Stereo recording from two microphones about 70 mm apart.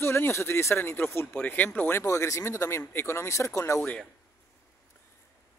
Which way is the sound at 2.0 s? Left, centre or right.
Left.